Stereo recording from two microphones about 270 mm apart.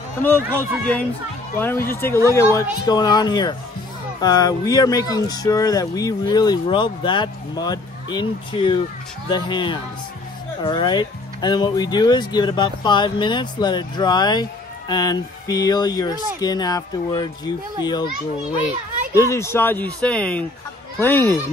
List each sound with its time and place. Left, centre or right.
0.2 s speech: centre
19.1 s speech: centre